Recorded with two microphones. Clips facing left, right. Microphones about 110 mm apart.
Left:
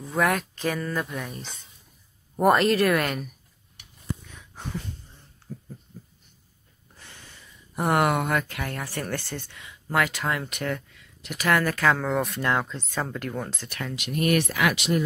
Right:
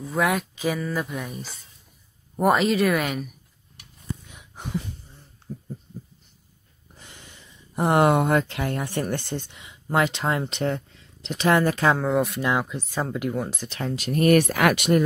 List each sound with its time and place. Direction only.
0.0 s speech: centre (ahead or behind)
4.3 s a sound: 15° right (ahead or behind)
7.0 s speech: 15° right (ahead or behind)
13.7 s speech: 35° right (ahead or behind); by 15.0 s 55° right (ahead or behind)